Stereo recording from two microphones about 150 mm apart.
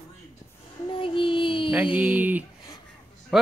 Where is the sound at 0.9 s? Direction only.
35° left (ahead or behind).